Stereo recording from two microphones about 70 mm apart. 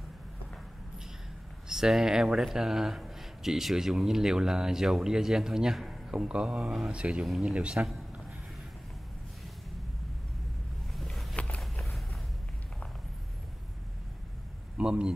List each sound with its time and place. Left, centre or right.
1.7 s speech: centre
10.9 s vehicle: centre
11.3 s a sound: centre
14.8 s speech: centre